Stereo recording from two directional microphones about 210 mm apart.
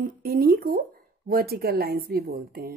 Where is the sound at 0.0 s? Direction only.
45° right (ahead or behind).